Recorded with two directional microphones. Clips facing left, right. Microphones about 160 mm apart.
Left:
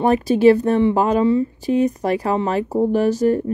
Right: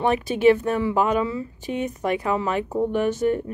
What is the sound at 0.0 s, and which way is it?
Speech, 40° left (ahead or behind).